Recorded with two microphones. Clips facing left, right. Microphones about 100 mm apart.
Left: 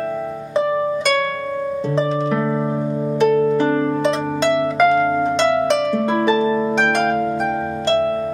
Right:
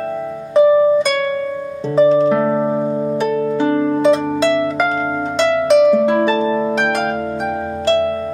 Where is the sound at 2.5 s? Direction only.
20° right (ahead or behind).